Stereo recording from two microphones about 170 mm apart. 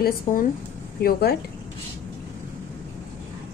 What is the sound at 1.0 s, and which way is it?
Speech, 70° left (ahead or behind).